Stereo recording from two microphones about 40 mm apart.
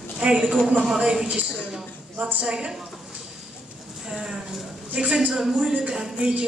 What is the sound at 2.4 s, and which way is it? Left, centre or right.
Speech, right.